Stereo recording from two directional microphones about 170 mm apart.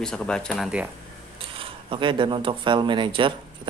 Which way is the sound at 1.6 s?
30° right (ahead or behind).